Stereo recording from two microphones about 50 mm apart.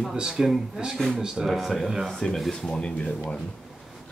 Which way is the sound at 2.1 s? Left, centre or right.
Centre.